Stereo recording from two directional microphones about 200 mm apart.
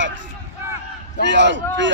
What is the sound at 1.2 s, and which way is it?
Speech, 60° right (ahead or behind).